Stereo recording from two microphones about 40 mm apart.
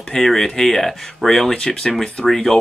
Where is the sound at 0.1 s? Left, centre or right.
Centre.